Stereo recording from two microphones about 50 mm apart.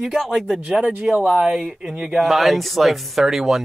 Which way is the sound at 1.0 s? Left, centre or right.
Centre.